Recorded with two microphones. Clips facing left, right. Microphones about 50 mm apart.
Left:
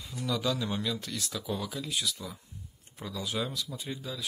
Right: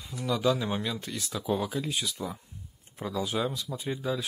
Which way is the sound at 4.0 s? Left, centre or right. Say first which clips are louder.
Right 8 dB; right.